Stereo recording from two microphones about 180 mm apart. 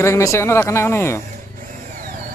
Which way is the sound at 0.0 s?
15° left (ahead or behind).